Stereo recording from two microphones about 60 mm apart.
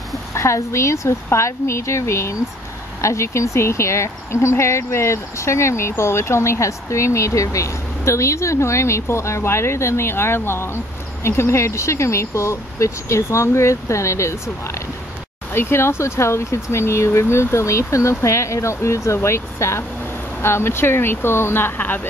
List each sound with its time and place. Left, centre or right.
0.3 s speech: left
15.5 s speech: left